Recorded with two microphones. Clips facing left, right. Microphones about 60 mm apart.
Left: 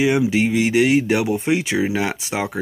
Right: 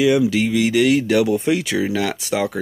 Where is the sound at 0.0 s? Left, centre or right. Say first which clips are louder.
Right 1 dB; left.